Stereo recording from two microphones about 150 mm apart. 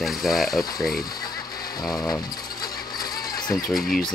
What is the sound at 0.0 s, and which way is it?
Speech, centre (ahead or behind).